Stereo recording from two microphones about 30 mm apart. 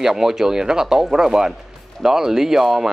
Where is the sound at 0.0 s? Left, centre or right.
Centre.